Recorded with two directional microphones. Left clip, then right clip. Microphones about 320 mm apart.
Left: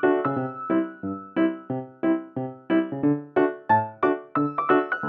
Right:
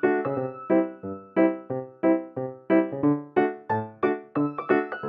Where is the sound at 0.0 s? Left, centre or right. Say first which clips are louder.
Left 2 dB; centre.